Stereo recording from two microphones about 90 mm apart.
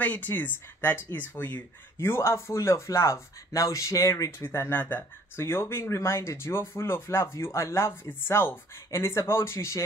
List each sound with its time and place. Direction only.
0.0 s speech: 20° left (ahead or behind)